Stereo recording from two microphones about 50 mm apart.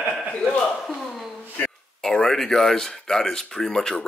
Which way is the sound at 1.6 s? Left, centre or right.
Centre.